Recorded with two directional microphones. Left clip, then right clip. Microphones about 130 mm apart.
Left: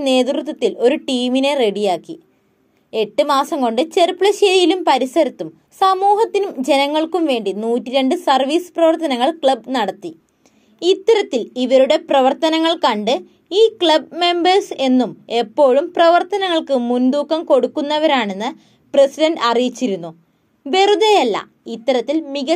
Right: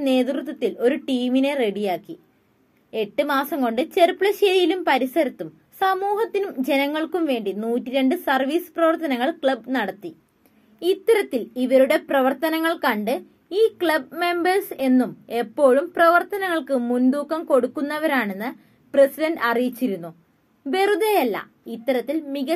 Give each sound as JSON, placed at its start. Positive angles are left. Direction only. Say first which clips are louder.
{"t": 0.0, "sound": "a woman's voice", "louder": "left 6 dB", "side_deg": 15}
{"t": 16.8, "sound": "speech", "louder": "left 4 dB", "side_deg": 35}
{"t": 17.1, "sound": "a child's voice", "louder": "left 7 dB", "side_deg": 20}